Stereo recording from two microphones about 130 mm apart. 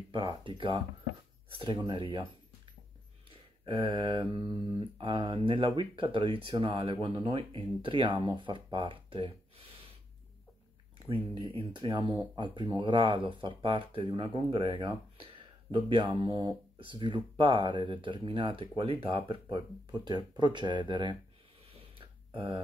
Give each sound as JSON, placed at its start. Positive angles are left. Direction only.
{"t": 0.1, "sound": "speech", "side_deg": -40}
{"t": 11.5, "sound": "speech", "side_deg": -40}
{"t": 21.6, "sound": "a sound", "side_deg": -45}